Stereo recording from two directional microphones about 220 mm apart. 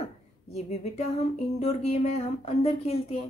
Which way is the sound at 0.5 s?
30° left (ahead or behind).